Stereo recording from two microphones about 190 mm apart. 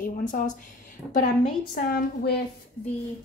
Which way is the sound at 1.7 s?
55° left (ahead or behind).